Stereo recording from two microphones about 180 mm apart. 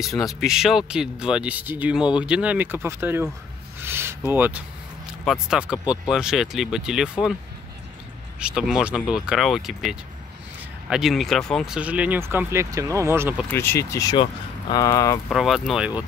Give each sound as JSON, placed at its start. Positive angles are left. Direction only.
{"t": 0.0, "sound": "speech", "side_deg": 0}
{"t": 3.8, "sound": "a sound", "side_deg": -15}
{"t": 5.2, "sound": "speech", "side_deg": 0}
{"t": 8.4, "sound": "speech", "side_deg": -5}
{"t": 13.5, "sound": "speech", "side_deg": 15}
{"t": 15.2, "sound": "speech", "side_deg": 0}